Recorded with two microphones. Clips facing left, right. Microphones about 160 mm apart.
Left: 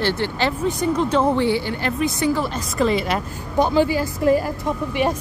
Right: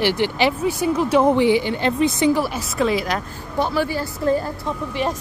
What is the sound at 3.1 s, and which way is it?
A woman's voice, 15° left (ahead or behind).